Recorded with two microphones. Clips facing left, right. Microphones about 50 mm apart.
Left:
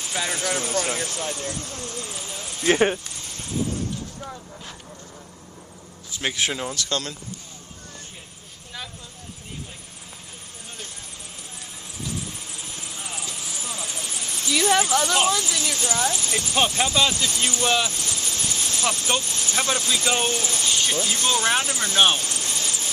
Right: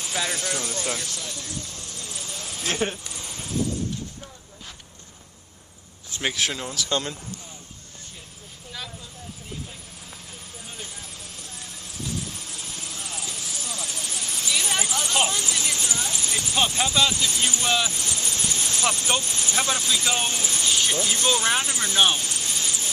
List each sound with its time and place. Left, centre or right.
0.0 s speech: centre
0.5 s speech: left
3.2 s a sound: centre
6.2 s speech: centre
6.9 s speech: centre
12.0 s vehicle: centre
14.6 s speech: centre
15.5 s speech: centre
16.1 s speech: centre
17.8 s vehicle: centre
18.8 s speech: centre
22.2 s vehicle: centre
22.6 s a sound: centre